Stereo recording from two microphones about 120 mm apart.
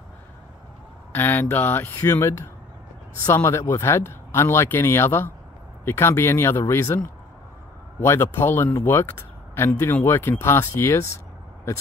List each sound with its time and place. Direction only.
1.1 s speech: 15° left (ahead or behind)